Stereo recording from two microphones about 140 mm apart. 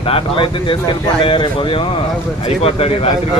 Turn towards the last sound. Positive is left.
turn(degrees=45)  # may be behind; listen again after turning